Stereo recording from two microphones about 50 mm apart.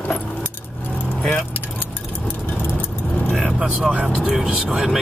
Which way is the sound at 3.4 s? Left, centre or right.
Centre.